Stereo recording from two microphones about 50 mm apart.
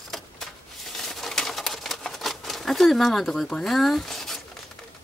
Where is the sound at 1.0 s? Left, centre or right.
Centre.